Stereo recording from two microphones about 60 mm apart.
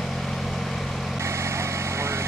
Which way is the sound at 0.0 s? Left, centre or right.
Centre.